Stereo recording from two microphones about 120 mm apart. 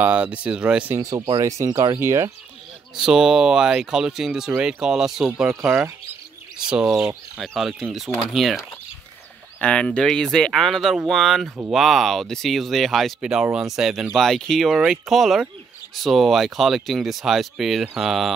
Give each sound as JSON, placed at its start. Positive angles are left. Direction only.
{"t": 0.0, "sound": "speech", "side_deg": -10}
{"t": 0.9, "sound": "speech", "side_deg": -30}
{"t": 2.0, "sound": "speech", "side_deg": -25}
{"t": 3.0, "sound": "speech", "side_deg": -5}
{"t": 9.6, "sound": "speech", "side_deg": 10}